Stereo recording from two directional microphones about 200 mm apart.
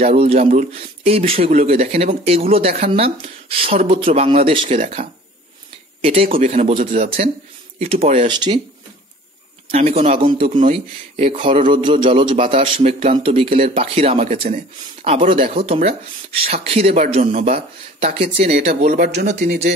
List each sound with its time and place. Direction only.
0.0 s speech: 30° right (ahead or behind)
9.7 s speech: 30° right (ahead or behind)
18.7 s speech: 45° right (ahead or behind)